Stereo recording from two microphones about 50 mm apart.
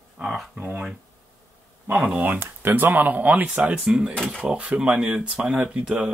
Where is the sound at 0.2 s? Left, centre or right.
Centre.